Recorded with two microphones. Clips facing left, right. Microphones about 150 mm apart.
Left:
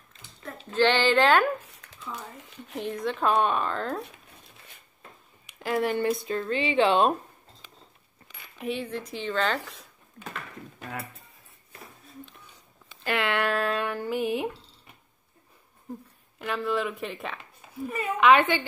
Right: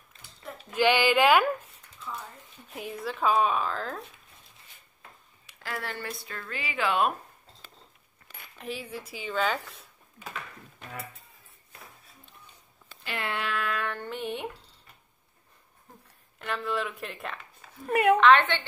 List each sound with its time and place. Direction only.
0.7 s speech: 10° right (ahead or behind)
1.8 s a sound: 90° left
2.8 s speech: 5° right (ahead or behind)
5.5 s speech: 20° left (ahead or behind)
8.5 s speech: centre (ahead or behind)
13.1 s speech: 75° left (ahead or behind)
13.5 s a sound: 40° left (ahead or behind)
13.8 s speech: 10° left (ahead or behind)
16.3 s speech: centre (ahead or behind)
17.8 s speech: 70° right (ahead or behind)
18.2 s a woman's voice: 10° left (ahead or behind)